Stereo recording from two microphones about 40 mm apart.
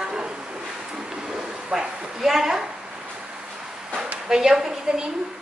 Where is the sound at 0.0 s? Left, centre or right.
Centre.